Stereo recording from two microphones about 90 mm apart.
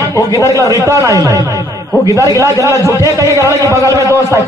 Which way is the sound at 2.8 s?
35° left (ahead or behind).